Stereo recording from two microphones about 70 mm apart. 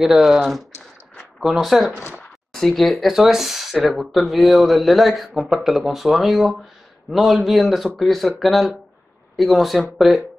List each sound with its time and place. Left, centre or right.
0.0 s speech: centre
2.0 s a sound: left
2.5 s speech: centre